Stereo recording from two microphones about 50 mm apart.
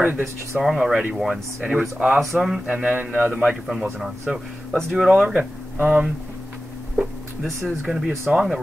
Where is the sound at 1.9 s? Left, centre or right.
Right.